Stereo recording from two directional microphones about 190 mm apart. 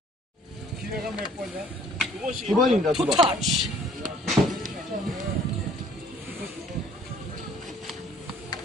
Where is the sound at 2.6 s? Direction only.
Centre (ahead or behind).